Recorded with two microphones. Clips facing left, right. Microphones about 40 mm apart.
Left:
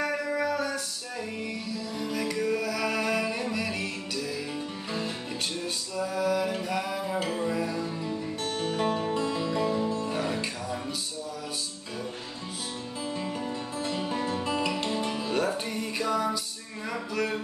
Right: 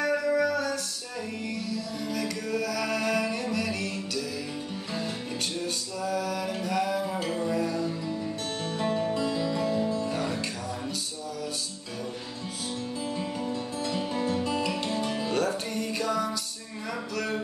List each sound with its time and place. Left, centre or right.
0.0 s music: centre
5.6 s music: centre
8.6 s music: left
13.1 s music: centre
17.1 s a sound: centre